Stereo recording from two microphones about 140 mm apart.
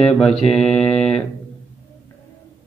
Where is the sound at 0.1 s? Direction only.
5° left (ahead or behind).